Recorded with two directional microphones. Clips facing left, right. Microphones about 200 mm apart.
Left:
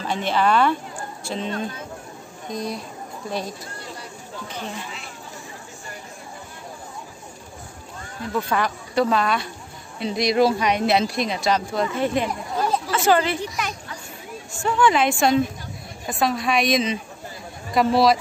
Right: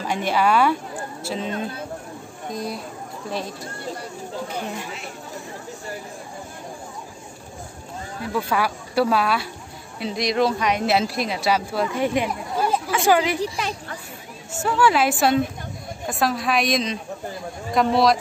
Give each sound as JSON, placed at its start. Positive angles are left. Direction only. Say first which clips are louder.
{"t": 0.0, "sound": "speech", "louder": "even", "side_deg": -10}
{"t": 2.5, "sound": "speech", "louder": "left 1 dB", "side_deg": -5}
{"t": 8.3, "sound": "speech", "louder": "even", "side_deg": -5}
{"t": 13.4, "sound": "speech", "louder": "right 3 dB", "side_deg": -30}
{"t": 14.6, "sound": "speech", "louder": "even", "side_deg": -5}